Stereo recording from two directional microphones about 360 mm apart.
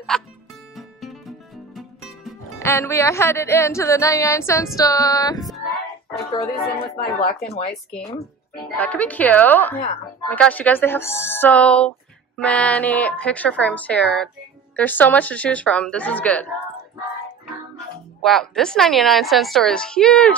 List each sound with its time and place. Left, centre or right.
0.1 s a woman's voice: centre
0.7 s music: centre
1.8 s speech: centre
5.4 s child singing: centre
6.1 s speech: left
8.7 s a woman's voice: centre
18.2 s a woman's voice: centre